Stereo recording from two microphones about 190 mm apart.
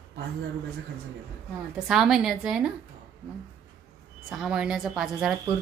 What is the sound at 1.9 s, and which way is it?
Speech, centre (ahead or behind).